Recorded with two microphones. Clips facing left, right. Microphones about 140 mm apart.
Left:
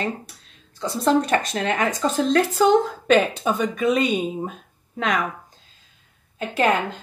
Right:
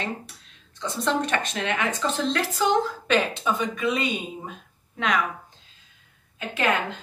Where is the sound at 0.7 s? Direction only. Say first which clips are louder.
Left 6 dB; 40° left (ahead or behind).